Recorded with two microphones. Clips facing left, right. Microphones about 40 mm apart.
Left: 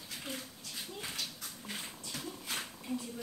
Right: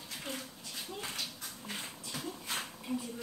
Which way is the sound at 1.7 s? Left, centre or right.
Centre.